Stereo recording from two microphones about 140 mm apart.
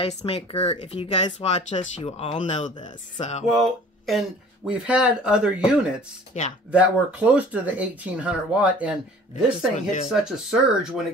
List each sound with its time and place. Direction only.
0.0 s speech: 45° left (ahead or behind)
3.4 s speech: centre (ahead or behind)
6.4 s speech: 55° left (ahead or behind)
6.7 s speech: 10° right (ahead or behind)
9.8 s speech: 60° left (ahead or behind)
10.0 s speech: 5° right (ahead or behind)